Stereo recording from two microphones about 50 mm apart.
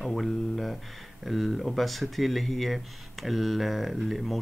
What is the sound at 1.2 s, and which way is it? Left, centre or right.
Speech, centre.